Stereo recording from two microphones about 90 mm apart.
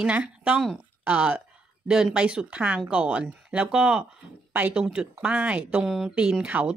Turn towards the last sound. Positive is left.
turn(degrees=-10)  # may be behind; listen again after turning